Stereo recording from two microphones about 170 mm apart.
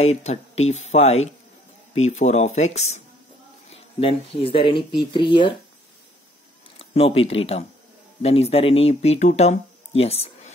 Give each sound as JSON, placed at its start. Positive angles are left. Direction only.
{"t": 0.0, "sound": "speech", "side_deg": 40}
{"t": 6.8, "sound": "speech", "side_deg": 35}